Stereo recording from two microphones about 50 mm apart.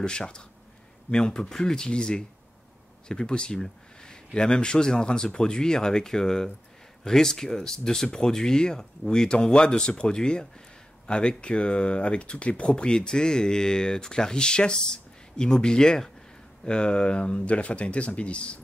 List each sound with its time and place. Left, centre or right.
0.0 s speech: centre